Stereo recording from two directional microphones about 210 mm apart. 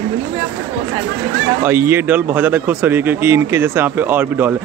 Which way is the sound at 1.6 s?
10° right (ahead or behind).